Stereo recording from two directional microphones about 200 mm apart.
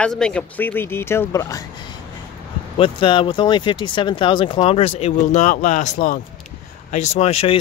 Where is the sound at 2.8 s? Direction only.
25° left (ahead or behind).